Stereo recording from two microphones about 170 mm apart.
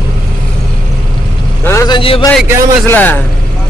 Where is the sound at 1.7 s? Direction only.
20° left (ahead or behind).